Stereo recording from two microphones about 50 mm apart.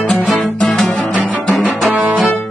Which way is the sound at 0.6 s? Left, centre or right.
Centre.